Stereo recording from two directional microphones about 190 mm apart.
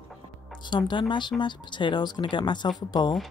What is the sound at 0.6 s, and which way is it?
Speech, 25° left (ahead or behind).